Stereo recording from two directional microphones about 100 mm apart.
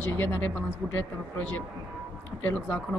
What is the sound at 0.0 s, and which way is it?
Speech, 20° left (ahead or behind).